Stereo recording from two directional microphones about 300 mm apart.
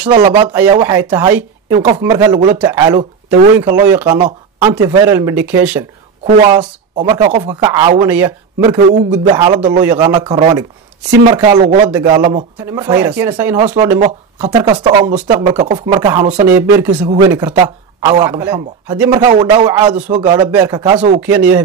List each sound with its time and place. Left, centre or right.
0.2 s a man's voice: centre
6.5 s a woman's voice: centre
8.0 s a man's voice: centre
11.9 s a man's voice: centre
12.2 s a man's voice: right
16.4 s a man's voice: centre
21.2 s a man's voice: centre